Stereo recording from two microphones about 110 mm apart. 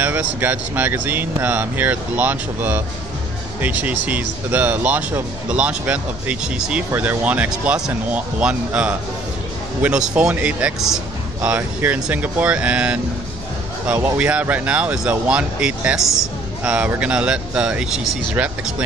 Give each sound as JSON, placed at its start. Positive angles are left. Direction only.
{"t": 0.0, "sound": "speech", "side_deg": -15}